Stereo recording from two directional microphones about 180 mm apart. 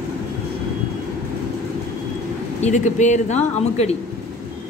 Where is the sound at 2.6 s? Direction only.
40° left (ahead or behind).